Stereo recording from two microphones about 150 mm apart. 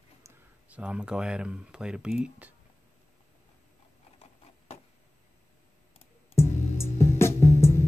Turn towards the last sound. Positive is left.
turn(degrees=15)  # may be behind; listen again after turning